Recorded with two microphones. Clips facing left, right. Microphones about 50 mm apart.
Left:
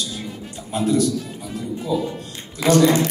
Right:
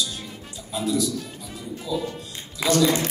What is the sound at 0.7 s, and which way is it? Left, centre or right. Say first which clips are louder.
Speech: left 5 dB; left.